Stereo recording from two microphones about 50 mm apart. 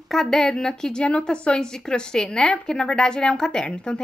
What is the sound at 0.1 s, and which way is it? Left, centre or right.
A woman's voice, centre.